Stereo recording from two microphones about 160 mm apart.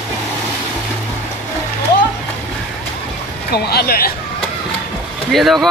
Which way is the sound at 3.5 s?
80° left.